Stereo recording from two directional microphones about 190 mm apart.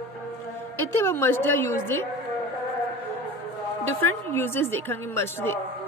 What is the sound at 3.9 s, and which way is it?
Speech, 90° right.